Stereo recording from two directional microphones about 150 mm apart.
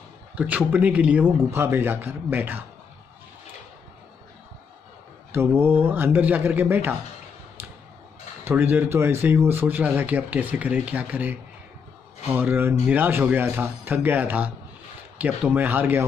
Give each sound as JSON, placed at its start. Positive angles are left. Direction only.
{"t": 0.4, "sound": "speech", "side_deg": -10}
{"t": 5.3, "sound": "speech", "side_deg": -15}
{"t": 8.5, "sound": "speech", "side_deg": -15}